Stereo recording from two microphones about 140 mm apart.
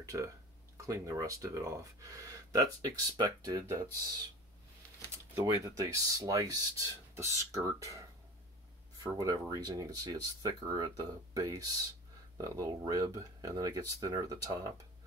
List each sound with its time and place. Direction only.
0.1 s speech: 20° right (ahead or behind)
5.4 s speech: 25° right (ahead or behind)